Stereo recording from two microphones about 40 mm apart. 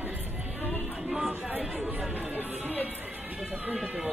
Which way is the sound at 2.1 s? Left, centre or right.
Right.